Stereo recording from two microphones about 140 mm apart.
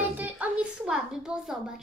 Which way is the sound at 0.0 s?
10° right (ahead or behind).